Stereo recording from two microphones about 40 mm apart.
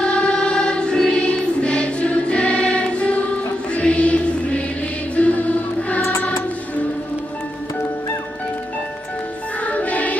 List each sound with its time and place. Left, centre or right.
0.0 s choir: left
5.1 s music: left
9.7 s music: left